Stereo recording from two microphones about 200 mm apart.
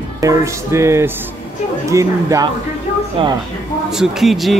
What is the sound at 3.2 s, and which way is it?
Speech, 25° right (ahead or behind).